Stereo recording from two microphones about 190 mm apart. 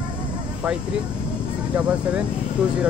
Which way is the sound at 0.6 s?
5° right (ahead or behind).